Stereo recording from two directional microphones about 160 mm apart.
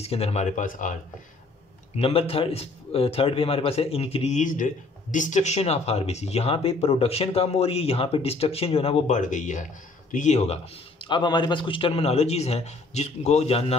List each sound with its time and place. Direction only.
0.0 s speech: 40° left (ahead or behind)
2.0 s speech: 35° left (ahead or behind)